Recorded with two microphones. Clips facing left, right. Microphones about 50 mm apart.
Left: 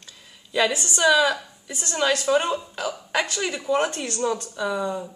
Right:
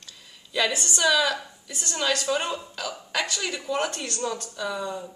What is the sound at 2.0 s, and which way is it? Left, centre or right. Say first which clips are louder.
A woman's voice: left 5 dB; centre.